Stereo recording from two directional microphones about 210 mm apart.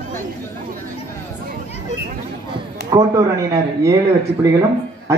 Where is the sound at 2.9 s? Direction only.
15° right (ahead or behind).